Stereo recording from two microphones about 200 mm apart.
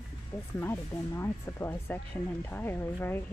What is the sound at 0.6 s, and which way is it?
Speech, 10° left (ahead or behind).